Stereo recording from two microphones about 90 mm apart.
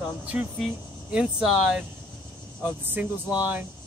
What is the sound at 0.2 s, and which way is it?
Speech, 15° right (ahead or behind).